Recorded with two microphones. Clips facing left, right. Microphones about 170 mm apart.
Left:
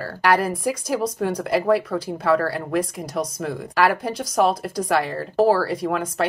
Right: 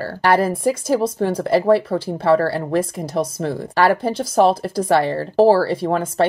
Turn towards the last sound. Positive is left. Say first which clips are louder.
# right 4 dB
turn(degrees=-30)  # may be behind; listen again after turning